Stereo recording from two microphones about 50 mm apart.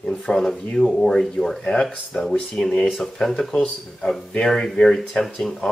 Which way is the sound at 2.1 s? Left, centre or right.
Left.